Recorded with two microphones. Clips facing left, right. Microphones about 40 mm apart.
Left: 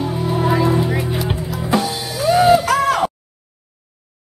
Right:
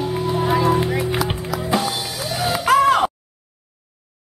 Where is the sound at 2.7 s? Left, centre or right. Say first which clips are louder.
Right 2 dB; centre.